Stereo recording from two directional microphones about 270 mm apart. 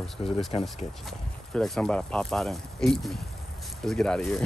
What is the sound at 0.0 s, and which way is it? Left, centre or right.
Speech, centre.